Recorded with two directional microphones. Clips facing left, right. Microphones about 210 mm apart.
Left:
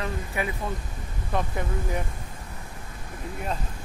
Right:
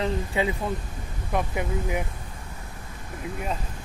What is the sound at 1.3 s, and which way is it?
Speech, 10° right (ahead or behind).